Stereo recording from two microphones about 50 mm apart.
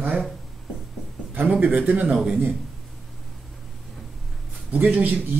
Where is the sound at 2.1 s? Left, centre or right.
Centre.